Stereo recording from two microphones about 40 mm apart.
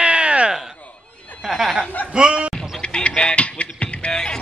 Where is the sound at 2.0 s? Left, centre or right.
Right.